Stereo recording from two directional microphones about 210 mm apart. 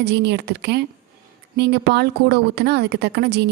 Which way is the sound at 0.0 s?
55° right (ahead or behind).